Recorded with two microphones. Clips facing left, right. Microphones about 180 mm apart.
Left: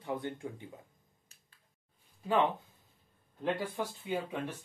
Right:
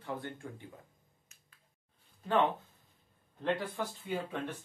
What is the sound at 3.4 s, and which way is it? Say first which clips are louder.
Speech: even; 10° left (ahead or behind).